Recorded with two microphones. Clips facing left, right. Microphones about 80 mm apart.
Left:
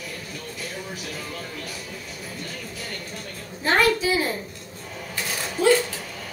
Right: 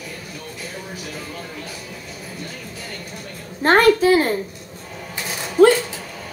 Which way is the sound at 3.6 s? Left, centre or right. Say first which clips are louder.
Right 7 dB; right.